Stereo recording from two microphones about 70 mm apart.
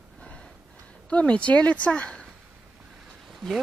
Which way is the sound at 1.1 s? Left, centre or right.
Centre.